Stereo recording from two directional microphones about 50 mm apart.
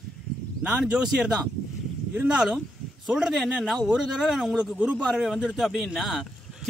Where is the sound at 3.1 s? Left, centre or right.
Centre.